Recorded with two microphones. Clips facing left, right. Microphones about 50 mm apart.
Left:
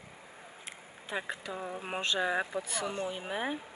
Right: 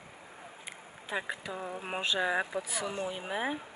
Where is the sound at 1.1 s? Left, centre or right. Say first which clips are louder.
Right 1 dB; centre.